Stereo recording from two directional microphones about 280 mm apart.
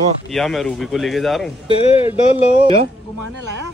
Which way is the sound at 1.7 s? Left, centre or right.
Left.